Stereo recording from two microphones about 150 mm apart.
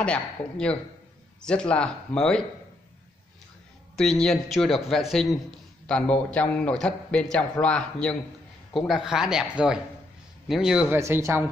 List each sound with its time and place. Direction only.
0.0 s a man's voice: 5° left (ahead or behind)
3.9 s a man's voice: 5° left (ahead or behind)
11.0 s speech: 20° right (ahead or behind)